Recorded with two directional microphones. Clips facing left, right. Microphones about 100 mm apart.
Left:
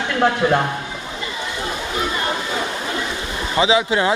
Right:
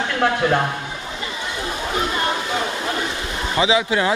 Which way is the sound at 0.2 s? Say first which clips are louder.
Left 2 dB; 10° left (ahead or behind).